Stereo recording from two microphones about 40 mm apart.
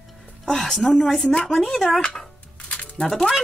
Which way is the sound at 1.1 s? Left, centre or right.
Centre.